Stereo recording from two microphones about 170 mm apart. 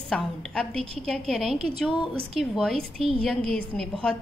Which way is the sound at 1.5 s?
35° right (ahead or behind).